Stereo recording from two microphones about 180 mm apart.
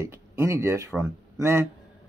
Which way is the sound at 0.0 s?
15° right (ahead or behind).